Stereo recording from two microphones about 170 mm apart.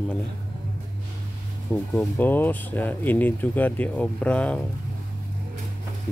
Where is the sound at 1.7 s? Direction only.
10° left (ahead or behind).